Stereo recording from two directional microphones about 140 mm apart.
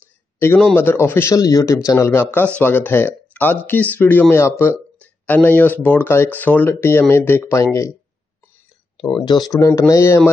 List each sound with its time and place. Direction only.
0.7 s speech: 15° left (ahead or behind)
9.1 s speech: 30° left (ahead or behind)